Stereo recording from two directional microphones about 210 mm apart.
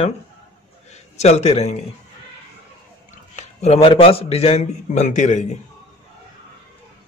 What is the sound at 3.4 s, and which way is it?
A man's voice, 30° left (ahead or behind).